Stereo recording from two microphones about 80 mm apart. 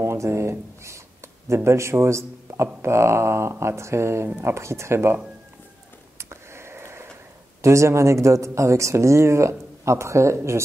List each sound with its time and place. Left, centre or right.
0.0 s speech: right
4.3 s speech: right
4.6 s speech: right
6.1 s a sound: right
7.6 s speech: right